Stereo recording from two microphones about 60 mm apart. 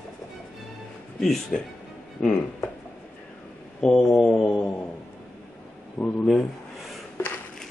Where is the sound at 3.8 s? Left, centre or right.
Centre.